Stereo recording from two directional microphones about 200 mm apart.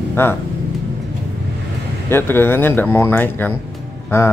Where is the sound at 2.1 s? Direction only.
10° left (ahead or behind).